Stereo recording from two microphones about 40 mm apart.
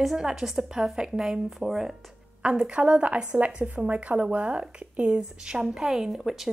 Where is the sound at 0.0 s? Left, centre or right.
Centre.